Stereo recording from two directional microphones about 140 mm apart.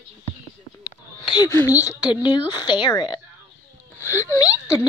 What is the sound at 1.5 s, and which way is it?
A woman's voice, 20° left (ahead or behind).